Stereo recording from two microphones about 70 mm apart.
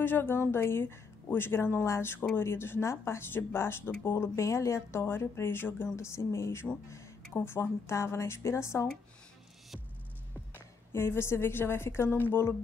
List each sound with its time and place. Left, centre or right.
0.0 s speech: left
5.9 s speech: left
10.9 s speech: left